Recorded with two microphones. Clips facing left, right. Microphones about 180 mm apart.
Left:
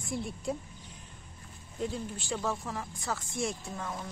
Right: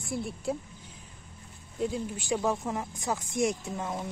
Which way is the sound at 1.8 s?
10° right (ahead or behind).